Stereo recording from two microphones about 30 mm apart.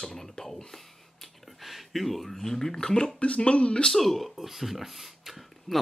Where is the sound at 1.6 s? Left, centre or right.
Centre; by 3.1 s left.